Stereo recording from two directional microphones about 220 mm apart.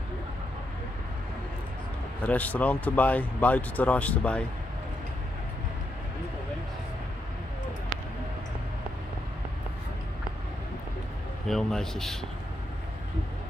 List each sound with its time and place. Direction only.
2.2 s speech: 5° left (ahead or behind)
11.4 s a man's voice: centre (ahead or behind)